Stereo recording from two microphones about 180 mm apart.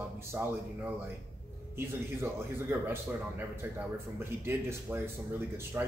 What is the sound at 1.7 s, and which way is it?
A man's voice, 15° right (ahead or behind).